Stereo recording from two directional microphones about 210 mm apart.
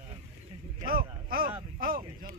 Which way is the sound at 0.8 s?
45° right (ahead or behind).